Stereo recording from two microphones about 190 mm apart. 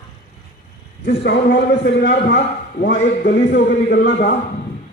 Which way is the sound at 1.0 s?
60° left (ahead or behind).